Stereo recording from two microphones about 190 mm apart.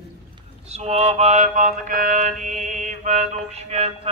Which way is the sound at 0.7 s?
35° right (ahead or behind).